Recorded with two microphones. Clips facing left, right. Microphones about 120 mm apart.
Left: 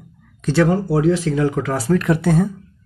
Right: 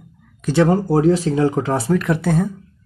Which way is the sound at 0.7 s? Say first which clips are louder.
Right 2 dB; 40° right (ahead or behind).